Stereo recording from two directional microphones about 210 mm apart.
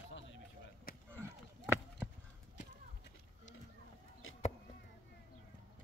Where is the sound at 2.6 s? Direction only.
50° left (ahead or behind).